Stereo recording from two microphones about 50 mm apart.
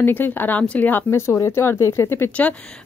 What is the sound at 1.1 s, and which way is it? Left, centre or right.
Speech, left.